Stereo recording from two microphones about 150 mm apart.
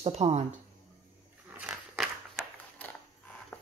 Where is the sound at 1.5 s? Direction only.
10° right (ahead or behind).